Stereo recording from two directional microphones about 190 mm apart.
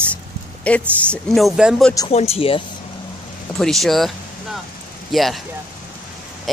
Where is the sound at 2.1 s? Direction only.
35° left (ahead or behind).